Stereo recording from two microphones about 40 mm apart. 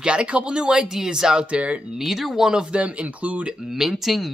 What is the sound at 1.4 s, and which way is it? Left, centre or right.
Speech, right.